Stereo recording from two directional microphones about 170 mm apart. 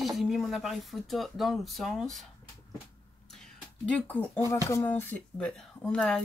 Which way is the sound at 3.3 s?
5° left (ahead or behind).